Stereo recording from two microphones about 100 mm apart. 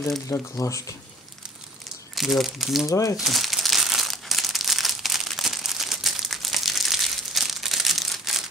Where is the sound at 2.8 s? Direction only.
35° left (ahead or behind).